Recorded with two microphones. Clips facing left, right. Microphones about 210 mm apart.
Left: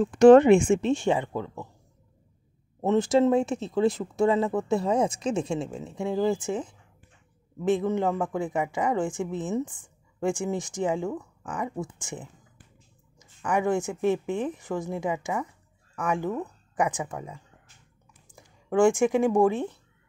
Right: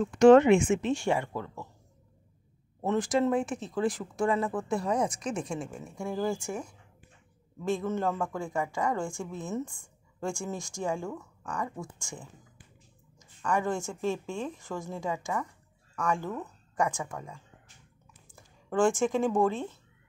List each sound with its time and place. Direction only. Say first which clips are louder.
0.0 s speech: left 3 dB; 35° left (ahead or behind); by 1.7 s 20° left (ahead or behind)
2.8 s a woman's voice: left 5 dB; 25° left (ahead or behind)